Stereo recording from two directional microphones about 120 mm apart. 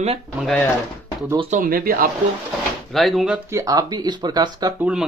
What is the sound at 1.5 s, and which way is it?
Speech, 90° right.